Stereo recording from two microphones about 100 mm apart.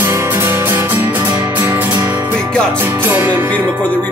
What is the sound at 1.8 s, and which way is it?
Music, 20° right (ahead or behind).